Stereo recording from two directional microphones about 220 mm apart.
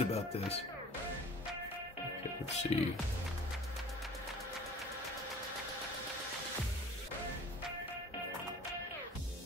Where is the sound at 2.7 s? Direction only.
30° left (ahead or behind).